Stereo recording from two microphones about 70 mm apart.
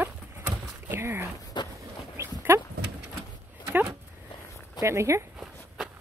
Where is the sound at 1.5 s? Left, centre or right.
Left.